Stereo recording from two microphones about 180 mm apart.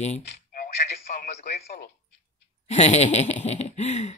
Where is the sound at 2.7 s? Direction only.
35° left (ahead or behind).